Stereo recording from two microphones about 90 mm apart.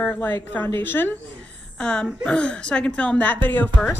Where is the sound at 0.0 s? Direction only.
20° left (ahead or behind).